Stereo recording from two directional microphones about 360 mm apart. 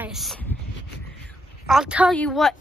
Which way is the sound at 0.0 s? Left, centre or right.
Centre.